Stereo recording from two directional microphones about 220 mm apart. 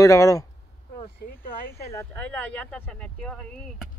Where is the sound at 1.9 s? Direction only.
10° left (ahead or behind).